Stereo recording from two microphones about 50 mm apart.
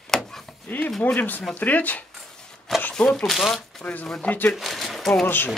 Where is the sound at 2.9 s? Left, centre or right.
Centre.